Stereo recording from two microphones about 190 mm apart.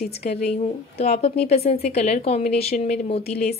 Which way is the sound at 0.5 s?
35° left (ahead or behind).